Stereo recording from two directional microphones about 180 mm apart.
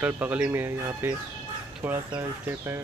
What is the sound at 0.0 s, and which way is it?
Speech, 5° right (ahead or behind).